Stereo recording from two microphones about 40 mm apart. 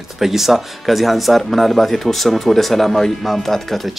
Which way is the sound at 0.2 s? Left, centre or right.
Centre.